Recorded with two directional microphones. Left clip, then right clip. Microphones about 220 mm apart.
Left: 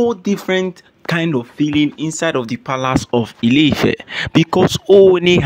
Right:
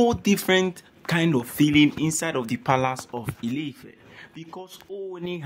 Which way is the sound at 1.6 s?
10° left (ahead or behind).